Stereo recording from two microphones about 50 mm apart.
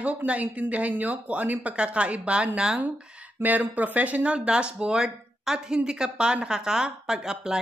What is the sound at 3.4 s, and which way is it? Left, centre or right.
A woman's voice, right.